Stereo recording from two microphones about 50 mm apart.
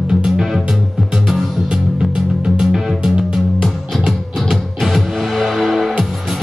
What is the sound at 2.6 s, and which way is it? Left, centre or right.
Music, centre.